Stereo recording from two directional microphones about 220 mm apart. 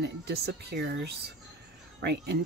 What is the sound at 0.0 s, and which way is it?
Speech, 50° right (ahead or behind).